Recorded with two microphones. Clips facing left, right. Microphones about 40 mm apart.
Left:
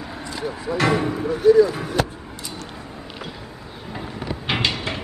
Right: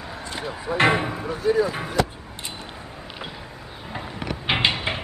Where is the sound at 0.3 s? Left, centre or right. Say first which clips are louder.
Left 3 dB; right.